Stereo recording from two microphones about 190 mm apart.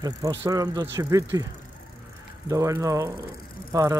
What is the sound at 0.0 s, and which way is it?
Speech, 20° right (ahead or behind).